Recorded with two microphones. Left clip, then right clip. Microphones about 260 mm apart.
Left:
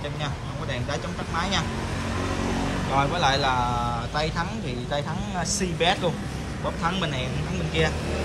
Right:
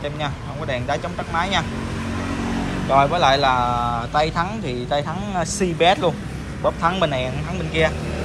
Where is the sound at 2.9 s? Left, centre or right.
Centre.